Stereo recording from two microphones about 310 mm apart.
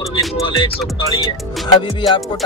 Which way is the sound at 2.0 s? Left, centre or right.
Centre.